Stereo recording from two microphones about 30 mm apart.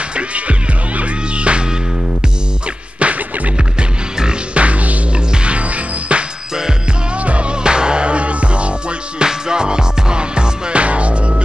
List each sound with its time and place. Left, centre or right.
0.1 s music: right
3.0 s music: right
4.6 s music: right
5.1 s music: right
7.2 s music: right
7.6 s music: right
9.2 s music: right